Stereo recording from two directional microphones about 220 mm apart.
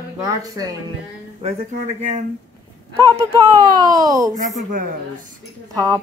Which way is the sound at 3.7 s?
15° right (ahead or behind).